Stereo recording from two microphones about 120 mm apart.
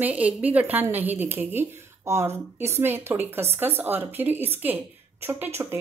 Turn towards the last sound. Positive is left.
turn(degrees=-20)  # may be behind; listen again after turning